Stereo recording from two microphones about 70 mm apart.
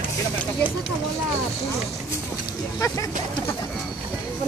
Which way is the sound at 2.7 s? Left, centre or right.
Left.